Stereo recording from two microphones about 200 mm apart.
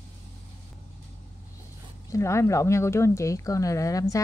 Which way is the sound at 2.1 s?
15° left (ahead or behind).